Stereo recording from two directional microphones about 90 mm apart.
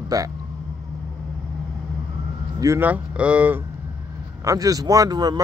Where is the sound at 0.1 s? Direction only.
40° right (ahead or behind).